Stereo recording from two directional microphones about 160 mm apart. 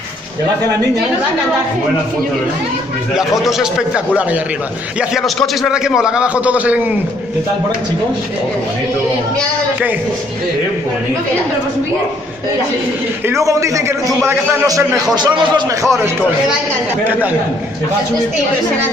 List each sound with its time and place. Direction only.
3.2 s a man's voice: centre (ahead or behind)
5.1 s a man's voice: centre (ahead or behind)
13.3 s a man's voice: 20° right (ahead or behind)
17.0 s a man's voice: 10° right (ahead or behind)